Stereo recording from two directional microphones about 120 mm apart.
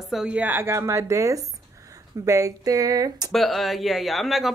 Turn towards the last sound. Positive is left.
turn(degrees=0)  # may be behind; listen again after turning